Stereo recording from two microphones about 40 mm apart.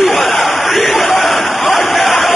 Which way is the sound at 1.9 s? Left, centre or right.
Centre.